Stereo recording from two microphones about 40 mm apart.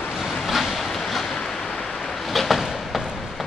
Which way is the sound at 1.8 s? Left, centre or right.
Centre.